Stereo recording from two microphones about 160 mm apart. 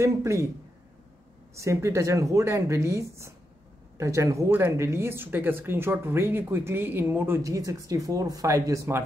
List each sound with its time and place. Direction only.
0.0 s speech: 15° right (ahead or behind)
1.5 s speech: 20° right (ahead or behind)